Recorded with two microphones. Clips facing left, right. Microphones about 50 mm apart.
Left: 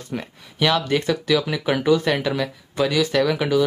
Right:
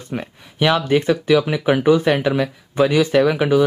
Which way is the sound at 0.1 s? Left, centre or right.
Centre.